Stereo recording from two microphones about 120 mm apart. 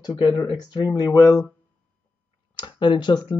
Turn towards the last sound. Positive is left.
turn(degrees=40)  # may be behind; listen again after turning